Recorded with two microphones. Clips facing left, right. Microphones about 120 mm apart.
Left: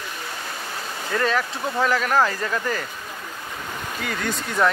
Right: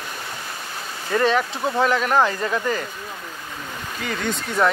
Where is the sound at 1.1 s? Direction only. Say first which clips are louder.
Right 4 dB; 15° right (ahead or behind).